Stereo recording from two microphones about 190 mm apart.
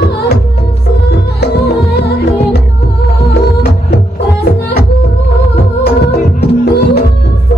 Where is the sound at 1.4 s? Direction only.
55° left (ahead or behind).